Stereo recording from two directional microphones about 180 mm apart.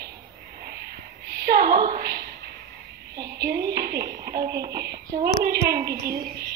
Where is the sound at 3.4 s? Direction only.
65° right (ahead or behind).